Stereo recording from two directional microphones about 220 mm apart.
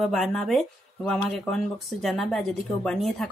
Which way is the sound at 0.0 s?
Centre (ahead or behind).